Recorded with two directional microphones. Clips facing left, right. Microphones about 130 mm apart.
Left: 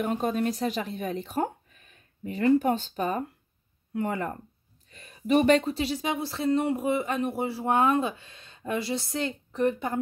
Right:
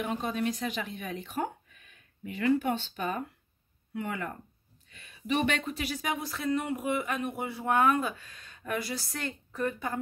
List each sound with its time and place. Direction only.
0.0 s speech: 45° left (ahead or behind); by 9.9 s 25° left (ahead or behind)